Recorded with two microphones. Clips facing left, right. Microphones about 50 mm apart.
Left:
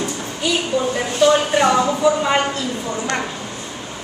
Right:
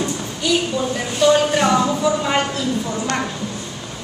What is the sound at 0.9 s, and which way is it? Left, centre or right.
Speech, centre.